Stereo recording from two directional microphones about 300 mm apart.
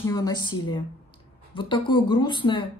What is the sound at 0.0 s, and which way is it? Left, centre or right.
Speech, centre.